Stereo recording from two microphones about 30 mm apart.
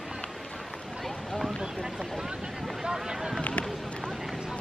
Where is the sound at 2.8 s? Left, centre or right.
Right.